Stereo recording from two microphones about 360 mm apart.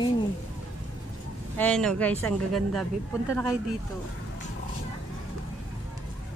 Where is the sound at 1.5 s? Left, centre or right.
Centre.